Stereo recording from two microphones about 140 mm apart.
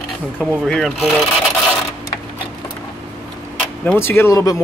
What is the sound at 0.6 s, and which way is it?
Speech, centre (ahead or behind).